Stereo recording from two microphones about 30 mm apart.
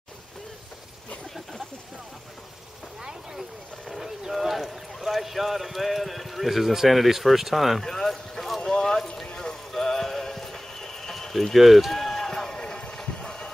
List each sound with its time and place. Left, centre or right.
4.3 s a sound: centre
6.9 s speech: centre
7.8 s a man's voice: centre
8.1 s clip-clop: centre
8.5 s boat: left
9.0 s clip-clop: centre
9.3 s music: left
9.7 s horse: centre
11.5 s speech: centre
12.0 s run: centre
12.3 s run: centre
12.6 s a sound: left
13.2 s a sound: left